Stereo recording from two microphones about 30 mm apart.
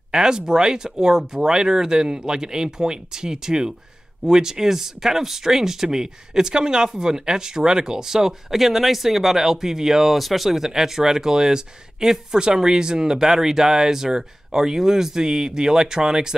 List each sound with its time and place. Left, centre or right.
0.1 s speech: right
10.1 s speech: centre; by 16.3 s right